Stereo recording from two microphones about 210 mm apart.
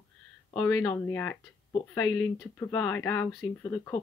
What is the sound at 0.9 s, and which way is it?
Speech, 10° left (ahead or behind).